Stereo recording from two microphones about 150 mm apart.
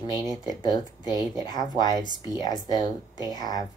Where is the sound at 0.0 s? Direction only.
25° left (ahead or behind).